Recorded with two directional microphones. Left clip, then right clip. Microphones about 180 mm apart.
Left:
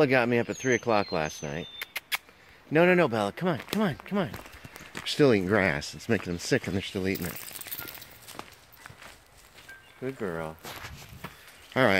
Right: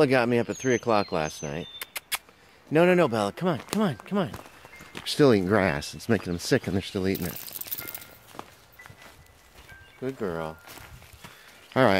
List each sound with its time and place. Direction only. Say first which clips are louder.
0.0 s speech: right 1 dB; 15° right (ahead or behind)
8.4 s walk: right 1 dB; 15° right (ahead or behind)
10.0 s speech: right 2 dB; 10° right (ahead or behind)
11.7 s speech: right 2 dB; 25° right (ahead or behind)